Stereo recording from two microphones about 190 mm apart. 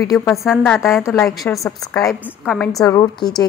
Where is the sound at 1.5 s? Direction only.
10° left (ahead or behind).